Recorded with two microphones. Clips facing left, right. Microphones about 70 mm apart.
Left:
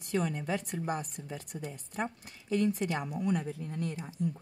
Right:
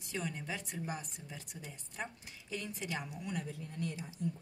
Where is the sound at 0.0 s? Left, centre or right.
Left.